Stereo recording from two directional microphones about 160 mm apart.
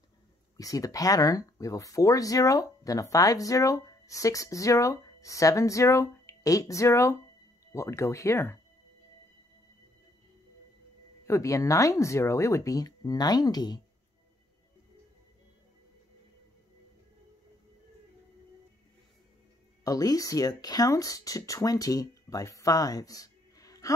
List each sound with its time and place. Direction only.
0.6 s speech: 20° left (ahead or behind)
11.2 s speech: 20° left (ahead or behind)
19.8 s speech: 25° left (ahead or behind)